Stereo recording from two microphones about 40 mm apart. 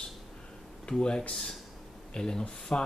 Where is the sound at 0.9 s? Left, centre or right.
Left.